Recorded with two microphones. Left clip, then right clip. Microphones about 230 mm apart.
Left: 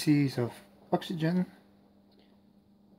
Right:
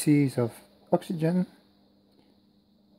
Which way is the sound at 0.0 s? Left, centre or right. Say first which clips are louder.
Right 4 dB; right.